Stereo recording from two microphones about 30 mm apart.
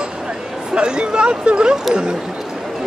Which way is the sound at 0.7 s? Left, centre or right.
Right.